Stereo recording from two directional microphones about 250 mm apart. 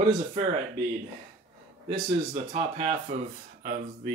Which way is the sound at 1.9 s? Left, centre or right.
Right.